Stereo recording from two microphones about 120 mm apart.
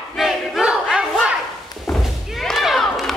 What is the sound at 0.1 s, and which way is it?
Battle cry, centre (ahead or behind).